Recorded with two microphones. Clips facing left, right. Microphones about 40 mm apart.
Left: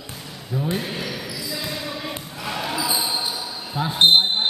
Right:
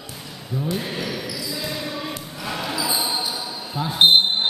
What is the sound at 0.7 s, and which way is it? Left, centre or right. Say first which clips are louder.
Speech: right 1 dB; centre.